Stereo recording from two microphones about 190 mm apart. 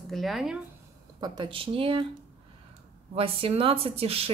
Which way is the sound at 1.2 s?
25° right (ahead or behind).